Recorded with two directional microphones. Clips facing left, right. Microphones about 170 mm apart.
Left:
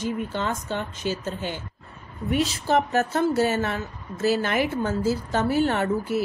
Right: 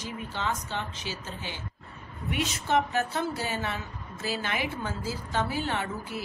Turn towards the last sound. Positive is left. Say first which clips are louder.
# left 9 dB
turn(degrees=50)  # may be behind; listen again after turning